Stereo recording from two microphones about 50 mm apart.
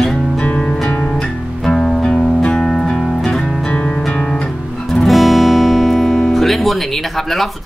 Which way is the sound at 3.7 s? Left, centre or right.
Left.